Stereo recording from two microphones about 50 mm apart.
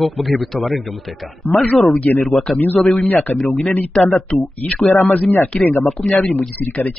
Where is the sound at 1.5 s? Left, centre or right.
Left.